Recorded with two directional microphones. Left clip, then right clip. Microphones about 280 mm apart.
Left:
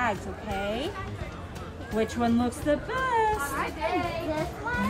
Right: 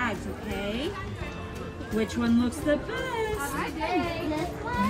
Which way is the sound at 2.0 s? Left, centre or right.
Centre.